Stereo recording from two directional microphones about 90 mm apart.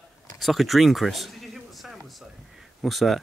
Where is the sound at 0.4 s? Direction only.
Centre (ahead or behind).